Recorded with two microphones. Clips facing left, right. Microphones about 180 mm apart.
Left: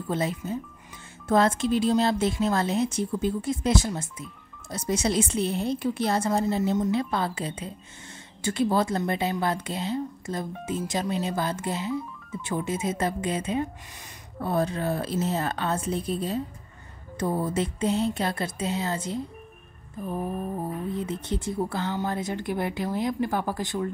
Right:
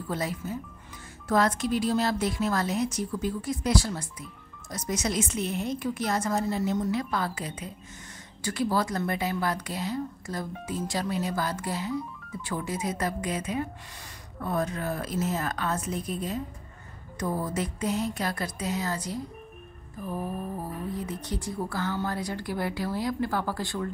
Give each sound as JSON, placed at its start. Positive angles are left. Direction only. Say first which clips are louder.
{"t": 0.1, "sound": "a woman's voice", "louder": "left 4 dB", "side_deg": 25}